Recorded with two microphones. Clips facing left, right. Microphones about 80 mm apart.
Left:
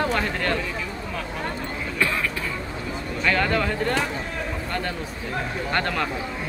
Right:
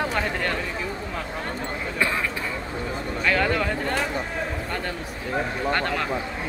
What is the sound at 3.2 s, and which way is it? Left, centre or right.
Speech, centre.